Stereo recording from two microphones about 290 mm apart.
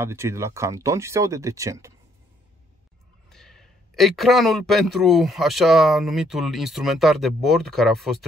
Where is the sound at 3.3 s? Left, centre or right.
Centre.